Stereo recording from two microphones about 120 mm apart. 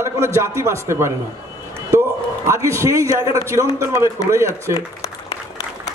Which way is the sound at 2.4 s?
25° right (ahead or behind).